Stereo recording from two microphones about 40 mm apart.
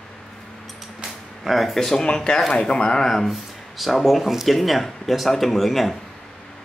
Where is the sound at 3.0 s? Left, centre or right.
Centre.